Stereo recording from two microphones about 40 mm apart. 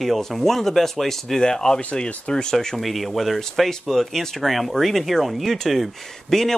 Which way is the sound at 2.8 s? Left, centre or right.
Centre.